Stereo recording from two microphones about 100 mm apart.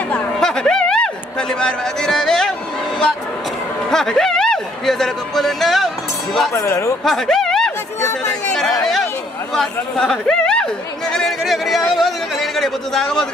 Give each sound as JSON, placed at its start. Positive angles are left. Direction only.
{"t": 0.1, "sound": "a sound", "side_deg": 5}
{"t": 3.9, "sound": "speech", "side_deg": 5}
{"t": 6.5, "sound": "speech", "side_deg": 30}
{"t": 7.1, "sound": "snicker", "side_deg": 5}
{"t": 8.3, "sound": "chatter", "side_deg": 5}
{"t": 9.5, "sound": "speech", "side_deg": 5}